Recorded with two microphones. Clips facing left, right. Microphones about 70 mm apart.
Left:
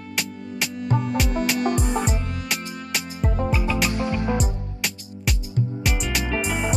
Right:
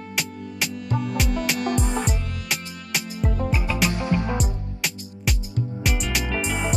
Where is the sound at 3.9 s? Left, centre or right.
Right.